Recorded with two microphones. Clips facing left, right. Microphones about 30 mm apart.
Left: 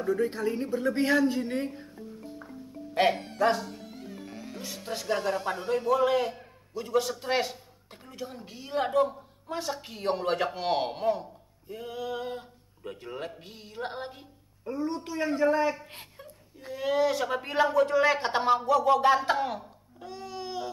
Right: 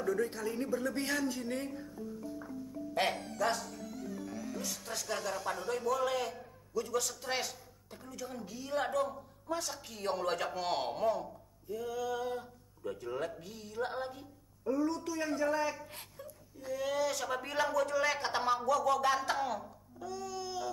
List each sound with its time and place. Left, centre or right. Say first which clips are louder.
0.0 s a woman's voice: left 6 dB; left